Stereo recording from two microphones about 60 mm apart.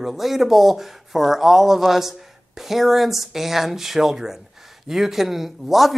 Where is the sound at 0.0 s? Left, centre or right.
Centre.